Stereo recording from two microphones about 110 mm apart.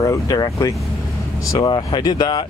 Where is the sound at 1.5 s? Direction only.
40° left (ahead or behind).